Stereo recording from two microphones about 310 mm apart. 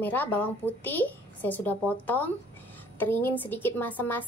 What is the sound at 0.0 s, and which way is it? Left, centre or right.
A woman's voice, centre.